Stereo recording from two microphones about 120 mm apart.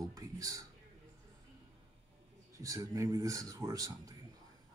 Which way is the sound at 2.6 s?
25° right (ahead or behind).